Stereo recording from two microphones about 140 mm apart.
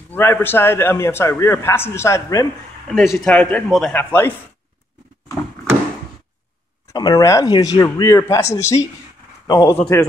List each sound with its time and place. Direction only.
0.1 s a man's voice: 15° left (ahead or behind)
3.0 s a man's voice: centre (ahead or behind)
3.6 s a man's voice: centre (ahead or behind)
3.9 s a man's voice: 15° left (ahead or behind)
6.9 s speech: 30° left (ahead or behind)